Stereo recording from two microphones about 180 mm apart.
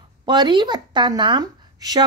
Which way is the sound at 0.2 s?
25° right (ahead or behind).